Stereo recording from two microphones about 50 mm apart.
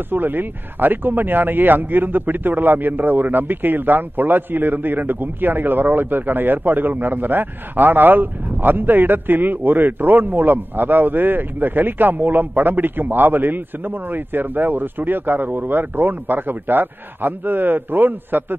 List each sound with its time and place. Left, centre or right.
0.1 s speech: right